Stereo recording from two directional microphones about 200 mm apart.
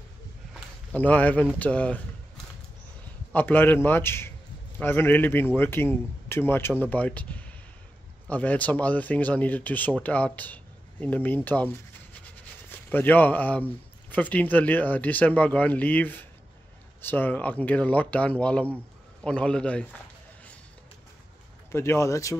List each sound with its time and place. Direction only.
0.9 s a man's voice: 10° left (ahead or behind)
3.3 s a man's voice: 10° left (ahead or behind)
21.7 s a man's voice: 15° left (ahead or behind)